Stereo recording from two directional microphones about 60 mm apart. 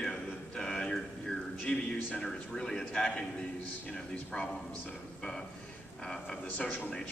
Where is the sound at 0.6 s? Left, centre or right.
Centre.